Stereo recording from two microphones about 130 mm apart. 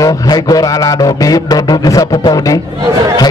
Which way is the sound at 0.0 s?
30° left (ahead or behind).